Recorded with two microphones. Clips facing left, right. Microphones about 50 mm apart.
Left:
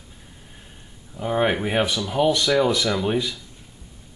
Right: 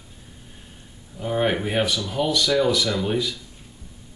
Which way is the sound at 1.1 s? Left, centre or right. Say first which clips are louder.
Left 1 dB; centre.